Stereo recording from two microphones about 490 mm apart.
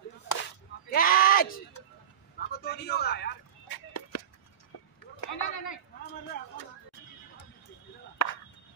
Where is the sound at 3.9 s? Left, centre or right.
Left.